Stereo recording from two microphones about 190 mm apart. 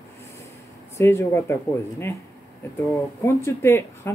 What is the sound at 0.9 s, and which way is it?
Speech, 15° left (ahead or behind).